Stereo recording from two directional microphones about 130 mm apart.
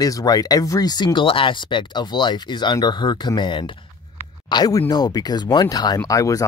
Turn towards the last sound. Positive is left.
turn(degrees=25)  # may be behind; listen again after turning